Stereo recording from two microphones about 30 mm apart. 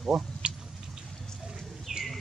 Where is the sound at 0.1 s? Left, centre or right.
Centre.